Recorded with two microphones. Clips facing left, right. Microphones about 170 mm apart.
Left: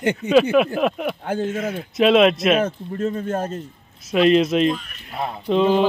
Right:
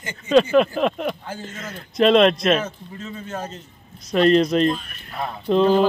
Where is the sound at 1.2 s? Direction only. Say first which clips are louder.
Left 10 dB; 60° left (ahead or behind).